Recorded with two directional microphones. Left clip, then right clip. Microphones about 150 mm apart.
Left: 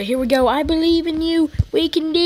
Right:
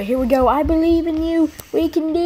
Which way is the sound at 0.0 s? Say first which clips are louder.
Right 1 dB; 35° left (ahead or behind).